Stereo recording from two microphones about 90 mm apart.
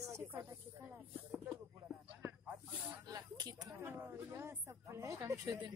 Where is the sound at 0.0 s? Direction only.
30° right (ahead or behind).